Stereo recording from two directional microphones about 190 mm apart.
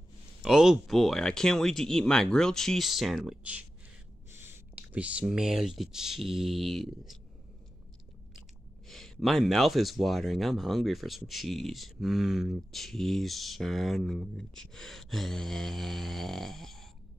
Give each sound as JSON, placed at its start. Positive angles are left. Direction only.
{"t": 0.4, "sound": "speech", "side_deg": 0}
{"t": 8.8, "sound": "speech", "side_deg": 0}